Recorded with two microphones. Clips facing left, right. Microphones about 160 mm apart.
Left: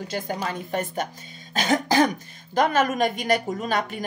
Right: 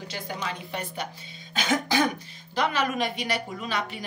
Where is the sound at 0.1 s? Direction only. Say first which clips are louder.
Left 5 dB; 45° left (ahead or behind).